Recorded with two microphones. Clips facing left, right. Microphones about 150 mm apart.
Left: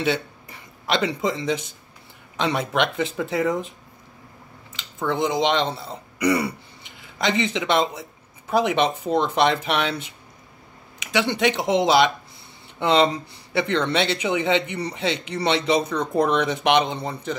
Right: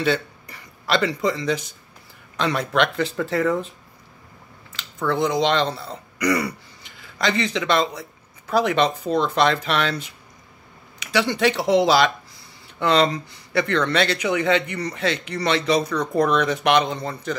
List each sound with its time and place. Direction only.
0.0 s a sound: 20° left (ahead or behind)
2.3 s speech: 20° left (ahead or behind)
3.0 s speech: 5° left (ahead or behind)
4.7 s speech: 20° left (ahead or behind)
7.0 s a sound: 20° left (ahead or behind)
7.5 s speech: 20° left (ahead or behind)
11.4 s speech: 20° left (ahead or behind)